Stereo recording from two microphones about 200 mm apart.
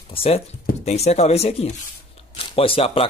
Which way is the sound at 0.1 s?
30° left (ahead or behind).